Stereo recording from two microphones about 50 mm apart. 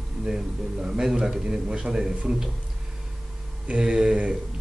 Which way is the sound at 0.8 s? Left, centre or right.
Centre.